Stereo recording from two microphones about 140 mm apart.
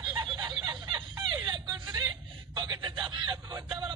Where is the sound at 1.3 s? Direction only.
35° right (ahead or behind).